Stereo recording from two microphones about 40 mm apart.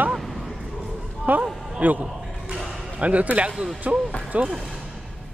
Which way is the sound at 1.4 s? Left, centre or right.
Right.